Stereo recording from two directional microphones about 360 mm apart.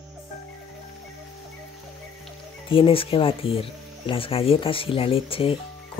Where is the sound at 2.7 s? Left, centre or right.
Centre.